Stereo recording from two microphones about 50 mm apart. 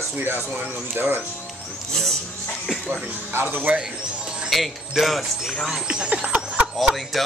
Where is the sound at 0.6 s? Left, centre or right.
Right.